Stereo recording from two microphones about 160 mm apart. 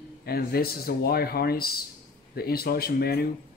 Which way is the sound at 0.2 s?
75° left (ahead or behind).